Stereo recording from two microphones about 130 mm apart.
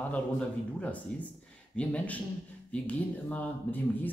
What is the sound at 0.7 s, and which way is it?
Speech, 10° left (ahead or behind).